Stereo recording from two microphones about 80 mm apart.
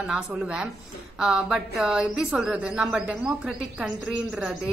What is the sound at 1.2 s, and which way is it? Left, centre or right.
A woman's voice, centre.